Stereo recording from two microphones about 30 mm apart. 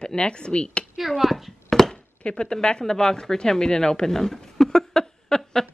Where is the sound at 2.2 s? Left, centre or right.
Left.